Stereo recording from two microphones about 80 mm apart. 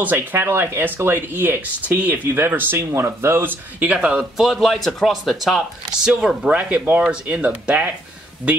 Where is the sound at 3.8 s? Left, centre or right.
Centre.